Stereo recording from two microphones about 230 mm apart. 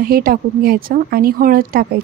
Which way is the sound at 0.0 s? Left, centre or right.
Right.